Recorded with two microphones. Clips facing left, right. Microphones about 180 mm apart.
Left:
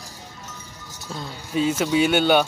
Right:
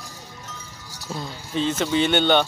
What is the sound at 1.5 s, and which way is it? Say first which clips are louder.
Speech: left 2 dB; 10° left (ahead or behind).